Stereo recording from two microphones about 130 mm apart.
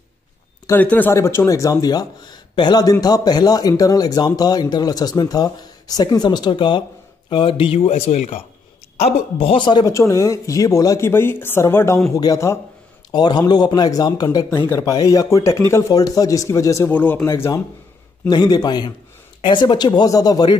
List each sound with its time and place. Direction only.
0.7 s speech: 15° left (ahead or behind); by 9.9 s 35° left (ahead or behind)
9.9 s speech: 25° left (ahead or behind)
18.3 s speech: 30° left (ahead or behind)